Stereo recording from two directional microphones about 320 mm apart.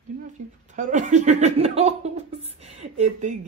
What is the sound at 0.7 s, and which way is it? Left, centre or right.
Speech, right.